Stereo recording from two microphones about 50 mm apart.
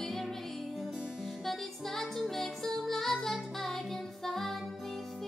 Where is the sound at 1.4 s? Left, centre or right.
Centre.